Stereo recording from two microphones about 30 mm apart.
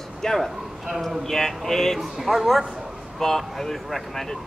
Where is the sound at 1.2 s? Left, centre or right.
Centre.